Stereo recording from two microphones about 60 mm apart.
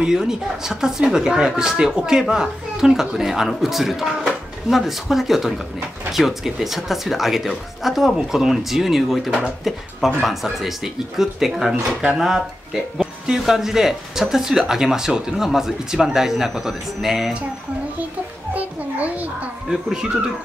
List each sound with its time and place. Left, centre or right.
0.0 s speech: centre
9.3 s speech: centre
18.5 s a sound: right
19.7 s speech: centre